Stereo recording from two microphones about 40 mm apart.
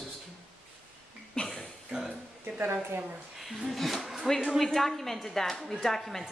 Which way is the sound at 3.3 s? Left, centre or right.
Centre.